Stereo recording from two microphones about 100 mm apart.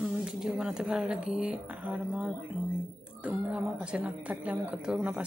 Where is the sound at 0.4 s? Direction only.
5° right (ahead or behind).